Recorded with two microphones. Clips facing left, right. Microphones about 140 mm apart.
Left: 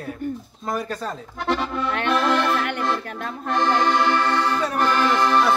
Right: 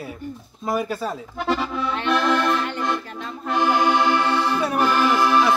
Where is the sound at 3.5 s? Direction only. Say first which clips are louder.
Right 1 dB; 10° right (ahead or behind).